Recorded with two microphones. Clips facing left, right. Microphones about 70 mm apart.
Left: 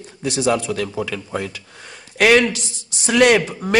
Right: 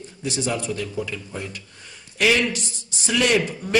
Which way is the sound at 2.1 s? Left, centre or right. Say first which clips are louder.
Left 6 dB; left.